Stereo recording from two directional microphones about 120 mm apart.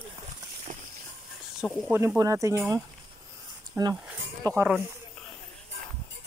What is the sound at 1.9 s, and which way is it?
Speech, 20° right (ahead or behind).